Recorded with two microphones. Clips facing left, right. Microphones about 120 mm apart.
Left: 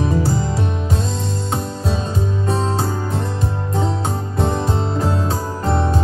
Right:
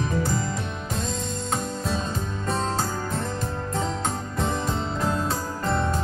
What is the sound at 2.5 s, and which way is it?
Music, 5° left (ahead or behind).